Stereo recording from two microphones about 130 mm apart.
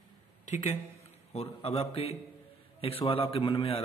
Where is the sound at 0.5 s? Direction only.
60° left (ahead or behind).